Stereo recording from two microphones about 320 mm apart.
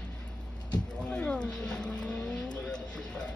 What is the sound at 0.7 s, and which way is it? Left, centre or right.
Vehicle, centre.